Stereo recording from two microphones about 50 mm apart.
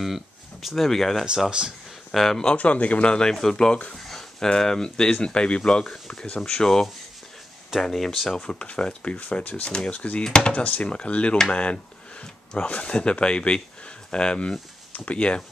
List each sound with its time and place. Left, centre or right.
0.0 s speech: centre
2.5 s speech: left; by 8.4 s centre
8.5 s speech: left
9.7 s speech: left